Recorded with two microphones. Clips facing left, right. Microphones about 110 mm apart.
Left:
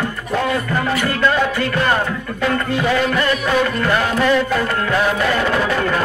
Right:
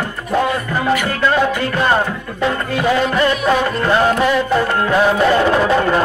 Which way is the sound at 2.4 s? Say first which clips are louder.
Right 1 dB; 20° right (ahead or behind).